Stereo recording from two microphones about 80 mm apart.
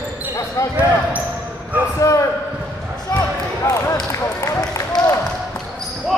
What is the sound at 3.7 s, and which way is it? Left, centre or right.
Basketball bounce, left.